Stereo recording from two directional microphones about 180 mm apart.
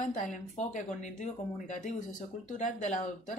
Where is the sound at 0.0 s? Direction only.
45° left (ahead or behind).